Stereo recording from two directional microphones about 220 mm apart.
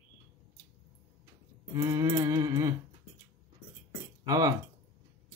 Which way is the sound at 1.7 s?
15° right (ahead or behind).